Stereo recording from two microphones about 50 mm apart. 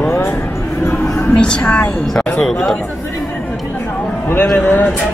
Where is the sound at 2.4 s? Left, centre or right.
Centre.